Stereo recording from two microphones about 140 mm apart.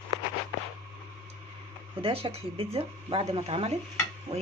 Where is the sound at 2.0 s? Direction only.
40° right (ahead or behind).